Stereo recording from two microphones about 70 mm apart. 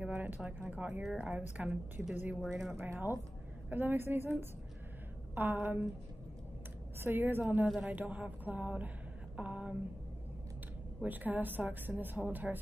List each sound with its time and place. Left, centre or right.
0.0 s a sound: right
0.7 s speech: centre
2.4 s speech: centre
2.7 s a woman's voice: right
7.0 s a woman's voice: right
7.6 s speech: centre
7.9 s speech: right
11.0 s speech: right